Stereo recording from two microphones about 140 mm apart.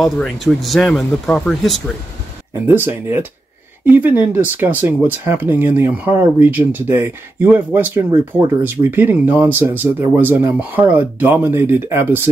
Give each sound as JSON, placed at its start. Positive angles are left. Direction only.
{"t": 0.0, "sound": "speech", "side_deg": 0}
{"t": 2.5, "sound": "speech", "side_deg": -15}